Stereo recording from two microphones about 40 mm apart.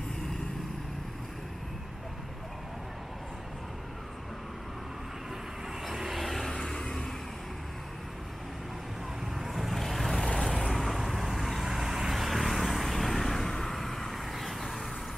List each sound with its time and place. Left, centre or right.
5.9 s vehicle: centre
6.5 s vehicle: centre
9.4 s vehicle: centre